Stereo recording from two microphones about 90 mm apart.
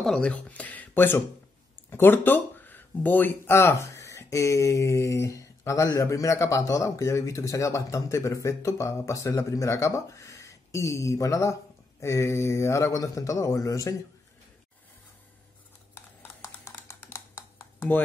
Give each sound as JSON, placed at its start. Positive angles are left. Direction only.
{"t": 0.0, "sound": "speech", "side_deg": 10}
{"t": 16.2, "sound": "computer keyboard", "side_deg": 30}